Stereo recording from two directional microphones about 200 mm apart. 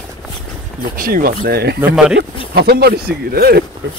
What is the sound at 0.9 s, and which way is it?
Speech, 45° right (ahead or behind).